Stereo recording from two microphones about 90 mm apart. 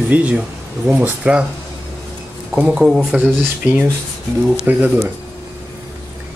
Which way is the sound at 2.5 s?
15° right (ahead or behind).